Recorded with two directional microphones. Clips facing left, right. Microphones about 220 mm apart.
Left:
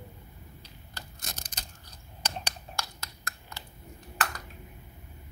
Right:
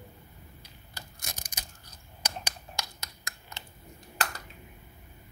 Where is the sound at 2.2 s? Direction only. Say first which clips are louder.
Left 1 dB; 15° right (ahead or behind).